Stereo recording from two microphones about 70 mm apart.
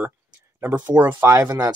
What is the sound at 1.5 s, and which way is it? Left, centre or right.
Speech, right.